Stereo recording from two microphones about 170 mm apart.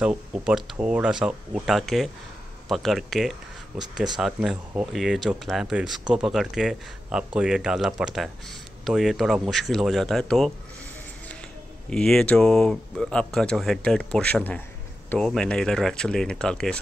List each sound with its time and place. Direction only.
0.0 s speech: 5° right (ahead or behind)
11.9 s speech: 5° left (ahead or behind)